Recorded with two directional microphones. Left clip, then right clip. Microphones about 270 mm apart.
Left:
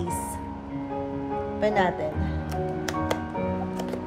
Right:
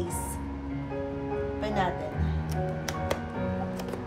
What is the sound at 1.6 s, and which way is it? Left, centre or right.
Speech, left.